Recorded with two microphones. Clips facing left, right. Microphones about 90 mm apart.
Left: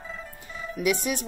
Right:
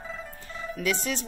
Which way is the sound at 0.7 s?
15° left (ahead or behind).